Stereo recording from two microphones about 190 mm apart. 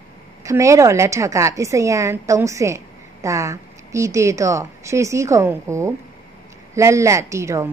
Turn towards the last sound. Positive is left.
turn(degrees=-15)  # may be behind; listen again after turning